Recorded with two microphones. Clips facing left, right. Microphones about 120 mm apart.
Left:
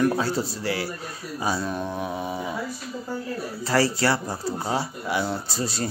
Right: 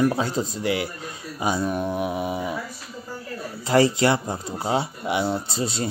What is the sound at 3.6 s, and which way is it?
Speech, 20° right (ahead or behind).